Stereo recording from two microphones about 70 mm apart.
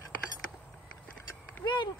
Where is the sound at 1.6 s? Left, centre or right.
Left.